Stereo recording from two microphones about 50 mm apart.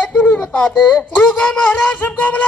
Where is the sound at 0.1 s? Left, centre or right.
Left.